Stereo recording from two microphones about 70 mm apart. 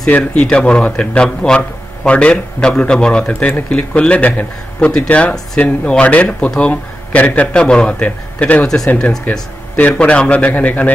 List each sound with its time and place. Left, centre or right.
0.1 s a man's voice: centre
8.6 s a man's voice: centre